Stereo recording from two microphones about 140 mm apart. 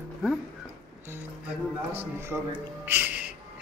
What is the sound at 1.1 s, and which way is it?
Music, 15° right (ahead or behind).